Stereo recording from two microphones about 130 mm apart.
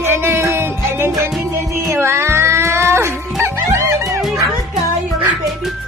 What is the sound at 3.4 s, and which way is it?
Music, 20° right (ahead or behind).